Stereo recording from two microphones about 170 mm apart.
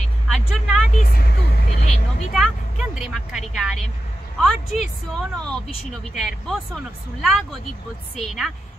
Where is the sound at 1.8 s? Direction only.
45° left (ahead or behind).